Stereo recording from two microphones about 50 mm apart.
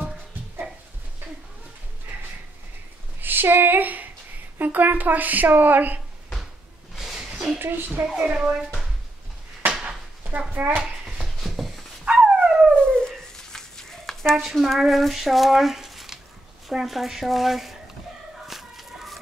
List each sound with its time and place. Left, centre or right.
3.2 s a sound: right
4.6 s a woman's voice: right
7.2 s a sound: centre
7.5 s a woman's voice: right
8.0 s a woman's voice: right
9.6 s a sound: right
10.6 s a woman's voice: right
11.4 s dog: centre
12.0 s dog: right
12.7 s dog: centre
14.3 s speech: centre
18.5 s fowl: centre